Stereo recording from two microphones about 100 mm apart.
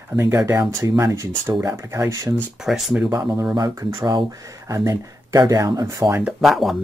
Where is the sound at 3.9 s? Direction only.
55° right (ahead or behind).